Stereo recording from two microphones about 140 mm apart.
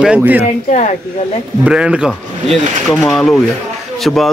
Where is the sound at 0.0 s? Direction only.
10° right (ahead or behind).